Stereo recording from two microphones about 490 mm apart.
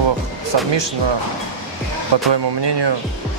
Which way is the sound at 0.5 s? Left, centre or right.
Right.